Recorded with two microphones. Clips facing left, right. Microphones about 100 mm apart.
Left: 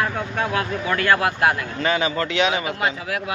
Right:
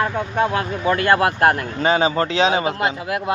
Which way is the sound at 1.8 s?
30° right (ahead or behind).